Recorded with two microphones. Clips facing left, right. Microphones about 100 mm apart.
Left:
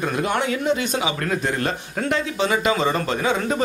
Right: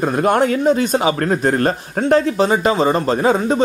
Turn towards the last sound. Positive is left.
turn(degrees=-35)  # may be behind; listen again after turning